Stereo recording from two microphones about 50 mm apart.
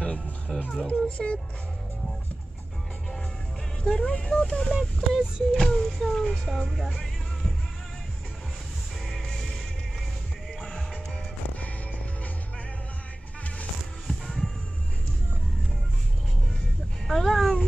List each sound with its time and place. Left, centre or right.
0.0 s music: centre
0.8 s speech: left
3.8 s speech: centre
9.0 s music: centre
14.0 s music: centre
17.1 s speech: centre